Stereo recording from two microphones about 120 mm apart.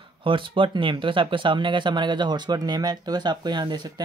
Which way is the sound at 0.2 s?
45° right (ahead or behind).